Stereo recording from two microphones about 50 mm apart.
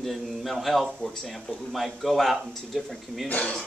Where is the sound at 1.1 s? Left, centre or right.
Centre.